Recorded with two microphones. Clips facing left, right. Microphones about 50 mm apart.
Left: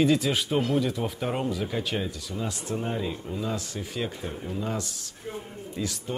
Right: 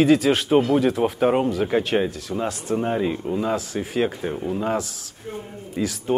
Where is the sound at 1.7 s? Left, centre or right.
Right.